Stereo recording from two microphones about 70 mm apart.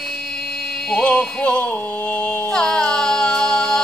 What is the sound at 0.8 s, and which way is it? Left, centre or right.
Music, centre.